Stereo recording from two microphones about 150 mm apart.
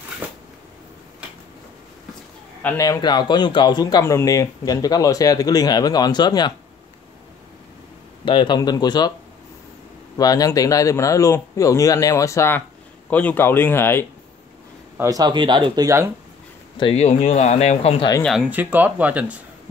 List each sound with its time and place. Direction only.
2.8 s speech: 25° left (ahead or behind)
8.3 s speech: 30° left (ahead or behind)
10.1 s speech: 25° left (ahead or behind)
15.0 s speech: 25° right (ahead or behind)
16.7 s speech: 40° left (ahead or behind)
18.2 s speech: 5° right (ahead or behind)